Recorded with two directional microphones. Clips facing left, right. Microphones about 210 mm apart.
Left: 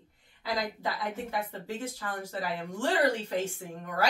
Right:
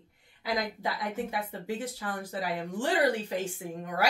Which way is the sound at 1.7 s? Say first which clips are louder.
Right 2 dB; 15° right (ahead or behind).